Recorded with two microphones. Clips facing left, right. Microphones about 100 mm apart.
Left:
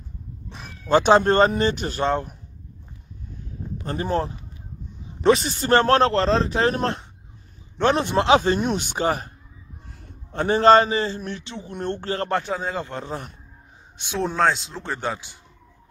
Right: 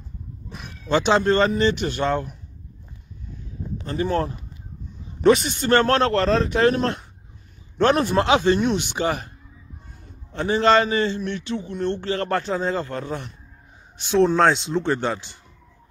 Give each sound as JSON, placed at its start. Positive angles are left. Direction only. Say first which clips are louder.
{"t": 0.5, "sound": "speech", "louder": "left 3 dB", "side_deg": 35}
{"t": 3.8, "sound": "speech", "louder": "right 1 dB", "side_deg": 45}
{"t": 5.2, "sound": "speech", "louder": "right 2 dB", "side_deg": 35}
{"t": 7.8, "sound": "speech", "louder": "right 2 dB", "side_deg": 20}
{"t": 8.3, "sound": "speech", "louder": "left 2 dB", "side_deg": 40}
{"t": 10.3, "sound": "speech", "louder": "left 3 dB", "side_deg": 50}
{"t": 11.7, "sound": "speech", "louder": "right 1 dB", "side_deg": 45}
{"t": 12.3, "sound": "speech", "louder": "right 2 dB", "side_deg": 10}
{"t": 12.9, "sound": "speech", "louder": "right 2 dB", "side_deg": 30}
{"t": 14.1, "sound": "speech", "louder": "right 5 dB", "side_deg": 0}